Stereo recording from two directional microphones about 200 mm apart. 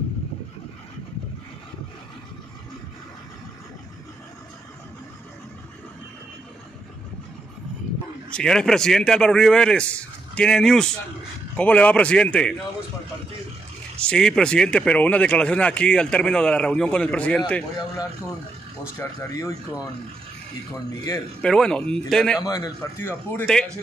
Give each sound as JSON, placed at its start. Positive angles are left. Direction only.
{"t": 8.3, "sound": "a man's voice", "side_deg": 5}
{"t": 13.9, "sound": "speech", "side_deg": 5}
{"t": 18.9, "sound": "a man's voice", "side_deg": 15}
{"t": 21.4, "sound": "speech", "side_deg": 5}
{"t": 22.4, "sound": "a man's voice", "side_deg": 20}